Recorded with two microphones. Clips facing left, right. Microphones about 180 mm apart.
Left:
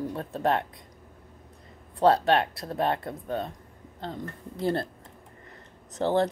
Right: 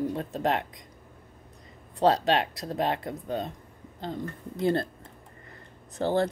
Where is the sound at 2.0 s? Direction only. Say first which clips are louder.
Left 2 dB; 15° right (ahead or behind).